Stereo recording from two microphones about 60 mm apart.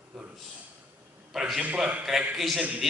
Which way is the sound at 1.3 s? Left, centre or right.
Centre.